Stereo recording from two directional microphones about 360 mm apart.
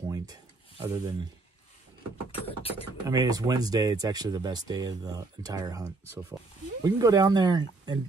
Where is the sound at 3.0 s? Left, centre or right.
Centre.